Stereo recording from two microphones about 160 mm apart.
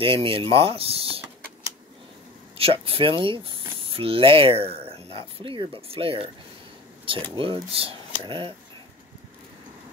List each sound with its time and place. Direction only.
0.0 s speech: 35° right (ahead or behind)
2.5 s speech: 35° right (ahead or behind)